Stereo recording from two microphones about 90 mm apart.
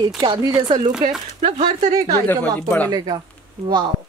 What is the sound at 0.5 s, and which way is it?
Speech, 70° right (ahead or behind).